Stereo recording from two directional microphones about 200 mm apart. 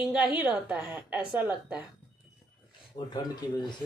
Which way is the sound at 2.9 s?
20° left (ahead or behind).